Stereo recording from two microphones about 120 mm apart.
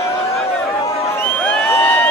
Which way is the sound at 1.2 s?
10° left (ahead or behind).